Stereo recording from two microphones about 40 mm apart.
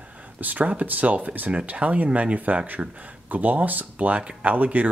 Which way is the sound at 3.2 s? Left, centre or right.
Right.